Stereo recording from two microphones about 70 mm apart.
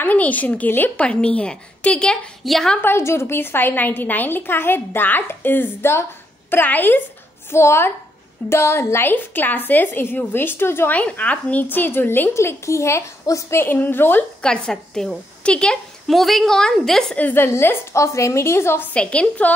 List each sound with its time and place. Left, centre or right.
0.0 s speech: left
1.0 s a woman's voice: centre
2.4 s a woman's voice: centre
2.8 s a woman's voice: left
7.5 s a woman's voice: left
11.0 s speech: centre
12.4 s a woman's voice: left
13.6 s a woman's voice: left
14.4 s a woman's voice: centre
16.1 s a woman's voice: centre
17.2 s a woman's voice: left
18.9 s speech: centre